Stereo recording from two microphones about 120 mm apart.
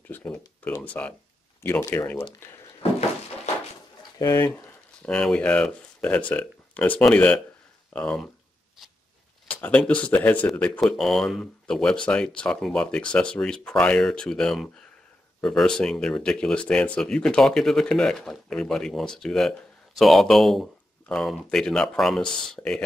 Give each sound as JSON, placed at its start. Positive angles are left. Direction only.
{"t": 0.1, "sound": "speech", "side_deg": 10}
{"t": 5.0, "sound": "speech", "side_deg": 5}
{"t": 9.5, "sound": "speech", "side_deg": 10}
{"t": 10.8, "sound": "speech", "side_deg": 0}